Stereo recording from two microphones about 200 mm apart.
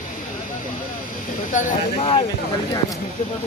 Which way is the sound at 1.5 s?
40° left (ahead or behind).